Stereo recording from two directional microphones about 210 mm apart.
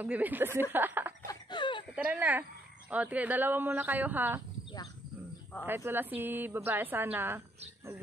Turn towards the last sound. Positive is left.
turn(degrees=-10)  # may be behind; listen again after turning